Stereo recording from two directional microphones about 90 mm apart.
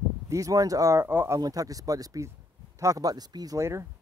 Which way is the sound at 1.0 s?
25° right (ahead or behind).